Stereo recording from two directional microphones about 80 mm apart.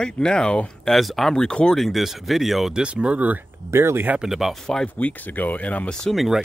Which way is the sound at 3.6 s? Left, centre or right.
Right.